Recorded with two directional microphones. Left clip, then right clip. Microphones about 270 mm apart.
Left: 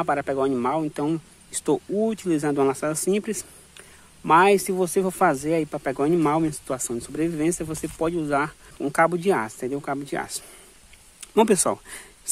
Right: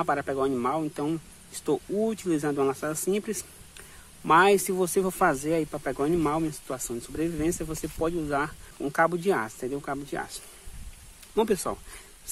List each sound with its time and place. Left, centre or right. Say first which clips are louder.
0.0 s speech: left 3 dB; centre
11.3 s speech: left 7 dB; left